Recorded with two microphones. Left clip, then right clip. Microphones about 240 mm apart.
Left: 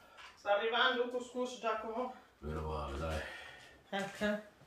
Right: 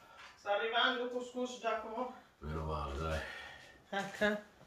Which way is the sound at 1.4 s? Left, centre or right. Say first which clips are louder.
Left 2 dB; left.